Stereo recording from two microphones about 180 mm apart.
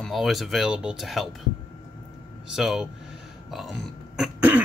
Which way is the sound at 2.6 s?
Centre (ahead or behind).